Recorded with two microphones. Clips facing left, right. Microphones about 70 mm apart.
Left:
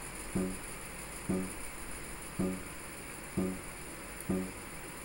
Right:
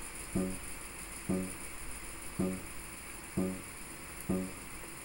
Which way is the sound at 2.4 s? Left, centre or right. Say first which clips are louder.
Even; left.